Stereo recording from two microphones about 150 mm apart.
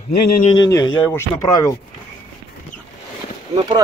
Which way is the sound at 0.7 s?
20° left (ahead or behind).